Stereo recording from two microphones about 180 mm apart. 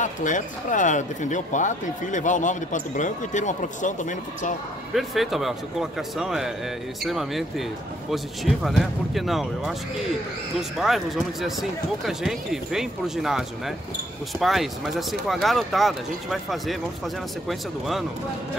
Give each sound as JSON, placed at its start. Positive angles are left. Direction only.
{"t": 0.0, "sound": "speech", "side_deg": 45}
{"t": 4.9, "sound": "speech", "side_deg": 0}
{"t": 12.0, "sound": "speech", "side_deg": 0}